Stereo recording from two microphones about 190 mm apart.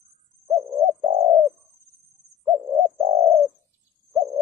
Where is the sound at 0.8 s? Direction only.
35° right (ahead or behind).